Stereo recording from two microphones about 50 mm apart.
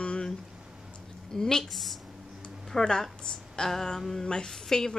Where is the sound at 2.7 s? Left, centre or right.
Centre.